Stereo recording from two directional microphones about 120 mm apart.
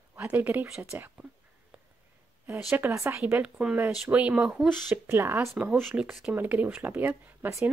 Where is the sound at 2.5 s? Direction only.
20° right (ahead or behind).